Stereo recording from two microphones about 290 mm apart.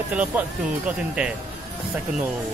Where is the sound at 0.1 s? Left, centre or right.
Centre.